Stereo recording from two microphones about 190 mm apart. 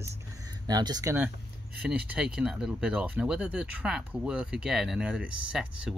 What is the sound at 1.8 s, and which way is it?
Speech, 5° right (ahead or behind).